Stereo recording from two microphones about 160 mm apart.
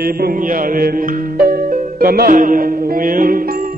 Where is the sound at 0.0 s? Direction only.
65° right (ahead or behind).